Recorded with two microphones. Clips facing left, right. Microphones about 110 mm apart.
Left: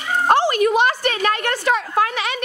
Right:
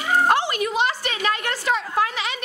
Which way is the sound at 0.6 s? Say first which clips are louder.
Left 6 dB; 55° left (ahead or behind).